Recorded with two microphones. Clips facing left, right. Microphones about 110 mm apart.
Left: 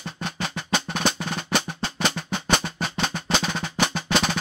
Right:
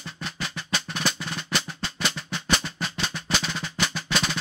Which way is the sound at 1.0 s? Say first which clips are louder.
Left 4 dB; 50° left (ahead or behind).